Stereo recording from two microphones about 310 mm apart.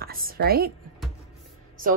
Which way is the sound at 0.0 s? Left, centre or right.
Right.